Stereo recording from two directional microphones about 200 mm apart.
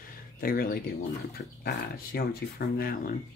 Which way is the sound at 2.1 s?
50° left (ahead or behind).